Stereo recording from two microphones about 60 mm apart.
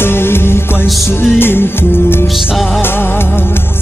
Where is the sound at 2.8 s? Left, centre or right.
Left.